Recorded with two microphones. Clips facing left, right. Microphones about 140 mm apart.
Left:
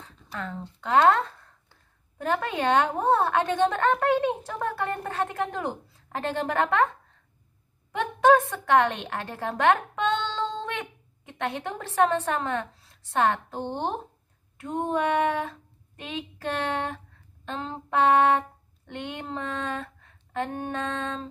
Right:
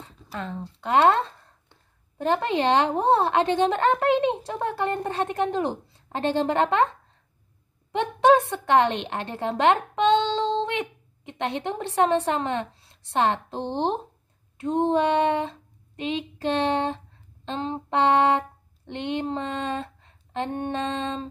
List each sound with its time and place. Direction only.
0.9 s a sound: 25° right (ahead or behind)
3.0 s a woman's voice: 25° right (ahead or behind)
7.9 s a woman's voice: 25° right (ahead or behind)